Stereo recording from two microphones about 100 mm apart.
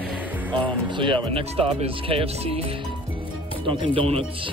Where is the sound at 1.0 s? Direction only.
55° right (ahead or behind); by 2.6 s 75° right (ahead or behind).